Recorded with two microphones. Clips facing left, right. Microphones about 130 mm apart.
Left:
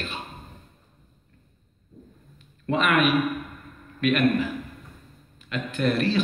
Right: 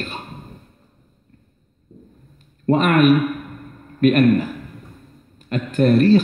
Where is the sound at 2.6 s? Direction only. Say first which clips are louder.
Right 8 dB; 45° right (ahead or behind).